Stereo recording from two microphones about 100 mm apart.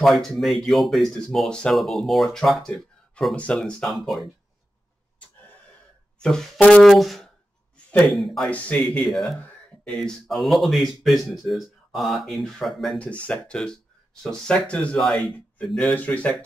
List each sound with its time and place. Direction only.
0.0 s speech: centre (ahead or behind)
6.1 s speech: 5° left (ahead or behind)
15.9 s speech: 15° left (ahead or behind)